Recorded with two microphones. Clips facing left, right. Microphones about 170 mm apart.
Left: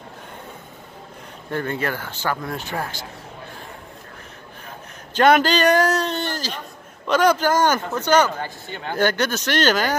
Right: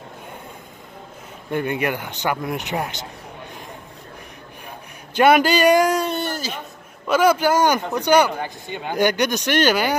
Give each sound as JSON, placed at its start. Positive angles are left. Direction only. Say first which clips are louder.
{"t": 1.5, "sound": "speech", "louder": "right 2 dB", "side_deg": -15}
{"t": 5.1, "sound": "a man's voice", "louder": "right 1 dB", "side_deg": -10}